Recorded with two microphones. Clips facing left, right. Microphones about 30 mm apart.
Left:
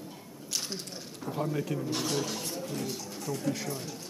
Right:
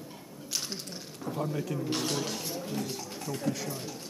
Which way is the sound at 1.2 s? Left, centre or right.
Centre.